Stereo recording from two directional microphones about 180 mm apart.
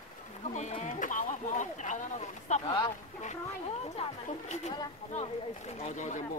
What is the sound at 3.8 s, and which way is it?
Speech, 35° left (ahead or behind).